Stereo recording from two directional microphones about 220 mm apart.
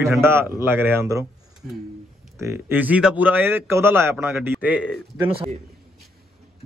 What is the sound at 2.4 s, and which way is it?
A man's voice, 10° right (ahead or behind).